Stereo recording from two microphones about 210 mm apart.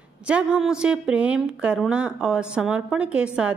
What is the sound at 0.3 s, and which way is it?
A woman's voice, 5° right (ahead or behind).